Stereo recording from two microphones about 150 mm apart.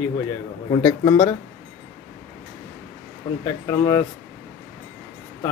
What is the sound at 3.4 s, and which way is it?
Speech, 20° left (ahead or behind).